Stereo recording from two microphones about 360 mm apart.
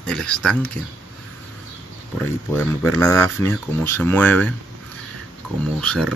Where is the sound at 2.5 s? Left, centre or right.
Centre.